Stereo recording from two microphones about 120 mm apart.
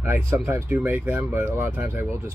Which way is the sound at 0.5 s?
20° right (ahead or behind).